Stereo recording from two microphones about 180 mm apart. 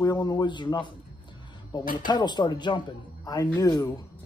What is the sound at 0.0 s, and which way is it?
Speech, 20° left (ahead or behind).